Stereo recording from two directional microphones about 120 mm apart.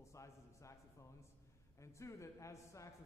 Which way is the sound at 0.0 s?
25° left (ahead or behind).